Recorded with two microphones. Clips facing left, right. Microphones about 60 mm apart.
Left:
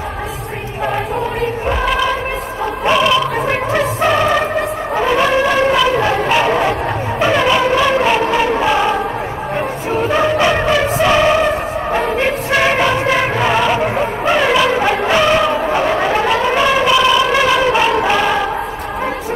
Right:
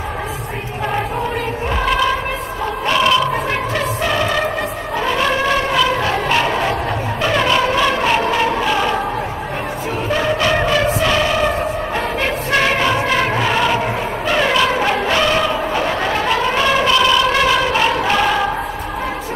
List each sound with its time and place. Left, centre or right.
1.7 s choir: centre
3.0 s music: centre
4.9 s brass instrument: centre
6.2 s a sound: centre
7.2 s music: centre
11.9 s music: centre
15.7 s a sound: centre